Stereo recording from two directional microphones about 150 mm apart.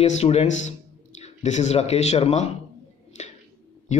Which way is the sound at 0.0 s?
45° left (ahead or behind).